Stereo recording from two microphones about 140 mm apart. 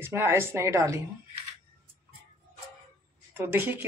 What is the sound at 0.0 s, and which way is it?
Speech, 15° right (ahead or behind).